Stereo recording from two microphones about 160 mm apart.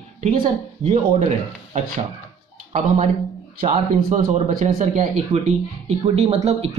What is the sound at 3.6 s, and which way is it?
Speech, 40° right (ahead or behind).